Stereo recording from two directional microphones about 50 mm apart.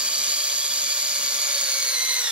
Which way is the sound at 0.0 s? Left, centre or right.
Right.